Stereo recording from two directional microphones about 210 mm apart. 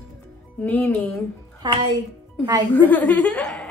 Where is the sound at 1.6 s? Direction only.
20° right (ahead or behind).